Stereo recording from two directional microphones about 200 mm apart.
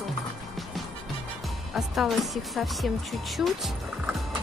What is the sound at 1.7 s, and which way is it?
A woman's voice, centre (ahead or behind).